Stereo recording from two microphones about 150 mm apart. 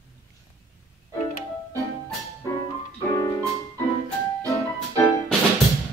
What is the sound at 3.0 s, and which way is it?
Music, 20° left (ahead or behind).